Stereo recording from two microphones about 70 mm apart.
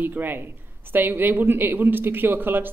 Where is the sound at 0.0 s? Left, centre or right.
Right.